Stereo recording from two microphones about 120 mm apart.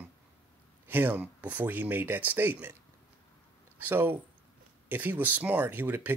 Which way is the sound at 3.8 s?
15° right (ahead or behind).